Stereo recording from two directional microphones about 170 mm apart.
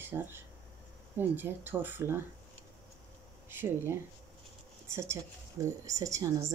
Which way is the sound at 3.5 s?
10° right (ahead or behind).